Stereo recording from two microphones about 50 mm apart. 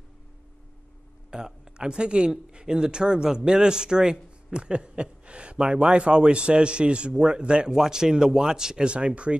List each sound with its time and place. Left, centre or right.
1.3 s speech: centre